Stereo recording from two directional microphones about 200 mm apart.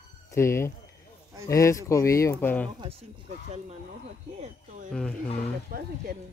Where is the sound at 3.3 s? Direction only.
35° right (ahead or behind).